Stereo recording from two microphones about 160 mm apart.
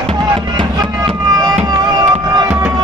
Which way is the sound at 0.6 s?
25° right (ahead or behind).